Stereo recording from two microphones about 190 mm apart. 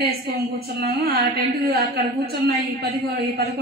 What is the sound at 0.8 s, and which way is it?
Carnatic music, 55° right (ahead or behind).